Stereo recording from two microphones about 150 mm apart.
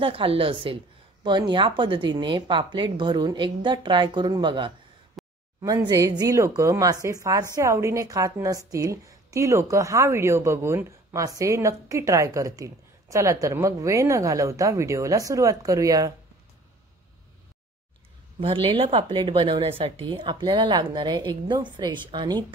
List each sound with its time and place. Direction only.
0.0 s a woman's voice: 35° right (ahead or behind)
5.2 s a sound: centre (ahead or behind)
5.6 s a woman's voice: 20° right (ahead or behind)
18.4 s a woman's voice: 35° right (ahead or behind)